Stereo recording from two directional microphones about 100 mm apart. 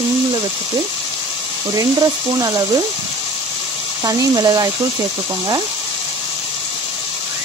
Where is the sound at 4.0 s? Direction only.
35° right (ahead or behind).